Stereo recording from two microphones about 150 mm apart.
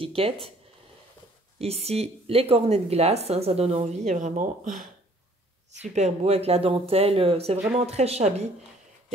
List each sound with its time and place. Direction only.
0.0 s speech: 40° right (ahead or behind)
1.6 s speech: 45° right (ahead or behind); by 4.8 s 65° right (ahead or behind)
5.8 s speech: 50° right (ahead or behind)